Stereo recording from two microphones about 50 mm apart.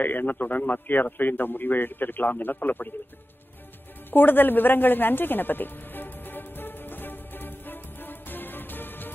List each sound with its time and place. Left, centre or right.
0.0 s a man's voice: left
4.1 s music: left